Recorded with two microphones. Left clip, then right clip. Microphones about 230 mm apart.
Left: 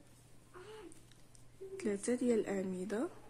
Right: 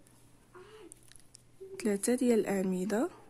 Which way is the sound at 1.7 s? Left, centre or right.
Right.